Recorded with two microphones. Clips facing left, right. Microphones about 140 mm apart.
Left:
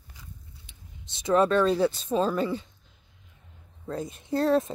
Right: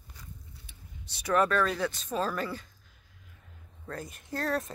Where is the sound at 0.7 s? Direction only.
25° left (ahead or behind).